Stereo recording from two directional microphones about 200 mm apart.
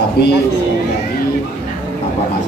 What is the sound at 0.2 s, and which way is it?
Speech, 55° left (ahead or behind).